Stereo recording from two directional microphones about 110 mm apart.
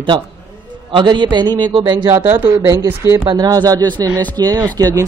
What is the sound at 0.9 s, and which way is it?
A man's voice, 45° right (ahead or behind).